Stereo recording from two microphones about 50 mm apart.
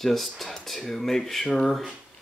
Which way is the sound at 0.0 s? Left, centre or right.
Centre.